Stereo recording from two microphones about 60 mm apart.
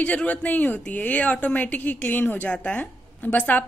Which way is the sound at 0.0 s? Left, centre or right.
Left.